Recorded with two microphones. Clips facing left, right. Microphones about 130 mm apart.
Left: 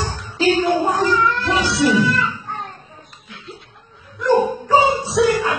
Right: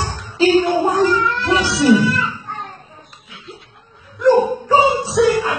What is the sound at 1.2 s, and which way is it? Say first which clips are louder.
Music: right 1 dB; centre (ahead or behind).